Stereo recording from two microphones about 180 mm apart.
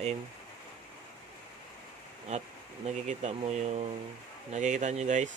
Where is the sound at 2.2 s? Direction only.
35° right (ahead or behind).